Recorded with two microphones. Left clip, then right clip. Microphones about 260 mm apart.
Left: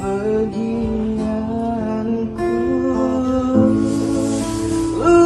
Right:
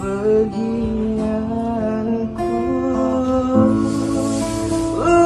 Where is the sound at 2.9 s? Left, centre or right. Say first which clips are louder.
Even; right.